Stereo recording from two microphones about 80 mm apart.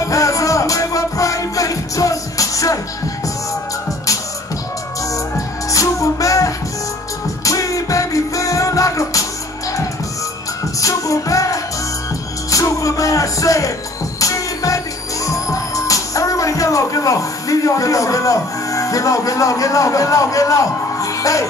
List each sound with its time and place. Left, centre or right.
0.1 s music: left
5.7 s music: left
10.8 s music: left